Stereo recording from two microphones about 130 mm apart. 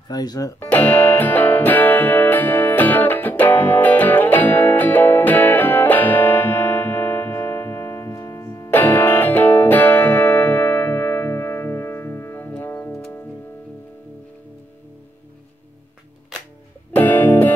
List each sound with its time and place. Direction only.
0.1 s speech: 30° left (ahead or behind)
0.6 s music: 15° left (ahead or behind)
16.9 s music: 15° left (ahead or behind)